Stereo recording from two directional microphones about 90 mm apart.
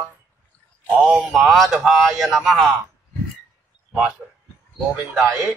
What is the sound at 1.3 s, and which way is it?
Speech, centre (ahead or behind).